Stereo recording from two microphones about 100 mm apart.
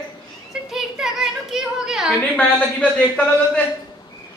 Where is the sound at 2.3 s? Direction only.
15° left (ahead or behind).